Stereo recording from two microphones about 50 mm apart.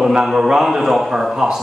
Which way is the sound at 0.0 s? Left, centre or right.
Centre.